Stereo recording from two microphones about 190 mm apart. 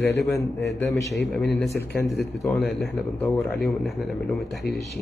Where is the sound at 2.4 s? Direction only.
Centre (ahead or behind).